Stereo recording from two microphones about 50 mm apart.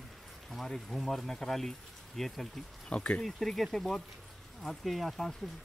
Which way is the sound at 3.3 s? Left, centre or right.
Centre.